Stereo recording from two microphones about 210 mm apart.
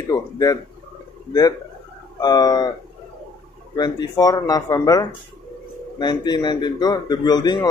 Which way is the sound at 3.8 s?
20° left (ahead or behind).